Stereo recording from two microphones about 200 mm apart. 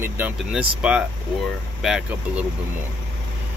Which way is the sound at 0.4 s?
5° right (ahead or behind).